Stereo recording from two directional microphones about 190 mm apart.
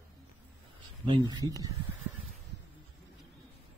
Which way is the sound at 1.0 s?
25° right (ahead or behind).